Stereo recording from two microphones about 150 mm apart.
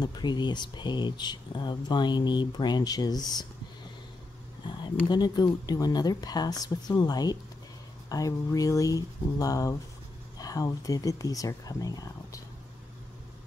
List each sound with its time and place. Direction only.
0.0 s speech: 30° left (ahead or behind)
5.0 s speech: 30° left (ahead or behind)